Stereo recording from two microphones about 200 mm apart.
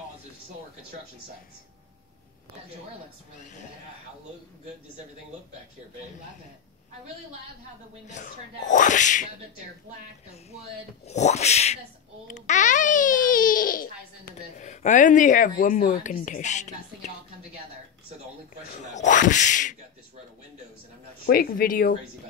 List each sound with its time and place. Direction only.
8.1 s a child's voice: 40° left (ahead or behind)
11.1 s a child's voice: 35° left (ahead or behind)
18.7 s a child's voice: 35° left (ahead or behind)
21.3 s speech: 45° left (ahead or behind)